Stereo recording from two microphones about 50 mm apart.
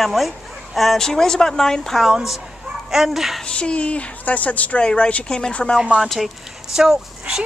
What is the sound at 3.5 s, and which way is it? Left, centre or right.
A woman's voice, left.